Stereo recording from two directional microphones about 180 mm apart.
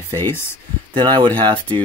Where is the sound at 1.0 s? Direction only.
25° right (ahead or behind).